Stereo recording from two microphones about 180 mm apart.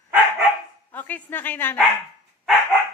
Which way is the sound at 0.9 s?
10° left (ahead or behind).